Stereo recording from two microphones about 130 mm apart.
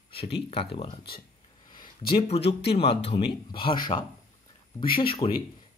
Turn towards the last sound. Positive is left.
turn(degrees=45)  # may be behind; listen again after turning